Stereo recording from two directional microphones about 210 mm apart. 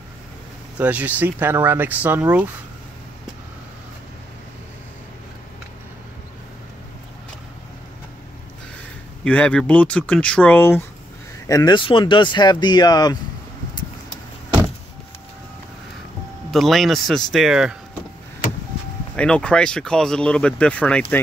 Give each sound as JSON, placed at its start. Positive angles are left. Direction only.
{"t": 0.7, "sound": "speech", "side_deg": -5}
{"t": 9.2, "sound": "speech", "side_deg": 5}
{"t": 16.5, "sound": "speech", "side_deg": 0}
{"t": 19.1, "sound": "speech", "side_deg": 5}